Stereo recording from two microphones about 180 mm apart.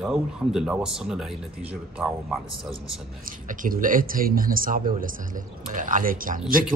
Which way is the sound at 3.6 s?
50° right (ahead or behind).